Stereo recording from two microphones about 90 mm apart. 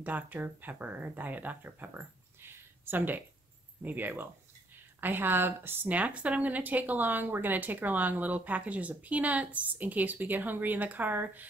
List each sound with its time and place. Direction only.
0.0 s speech: 20° right (ahead or behind)